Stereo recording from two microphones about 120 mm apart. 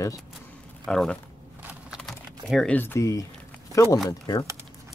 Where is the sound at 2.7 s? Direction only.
20° left (ahead or behind).